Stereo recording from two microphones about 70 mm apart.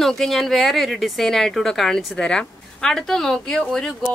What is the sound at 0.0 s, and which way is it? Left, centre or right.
A woman's voice, centre.